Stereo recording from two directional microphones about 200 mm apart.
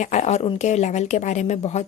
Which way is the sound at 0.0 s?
35° left (ahead or behind).